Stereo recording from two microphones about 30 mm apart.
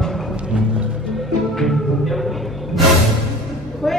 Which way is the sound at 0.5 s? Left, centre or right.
Right.